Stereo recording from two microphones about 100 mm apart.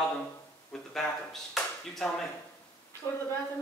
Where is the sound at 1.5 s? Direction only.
5° left (ahead or behind).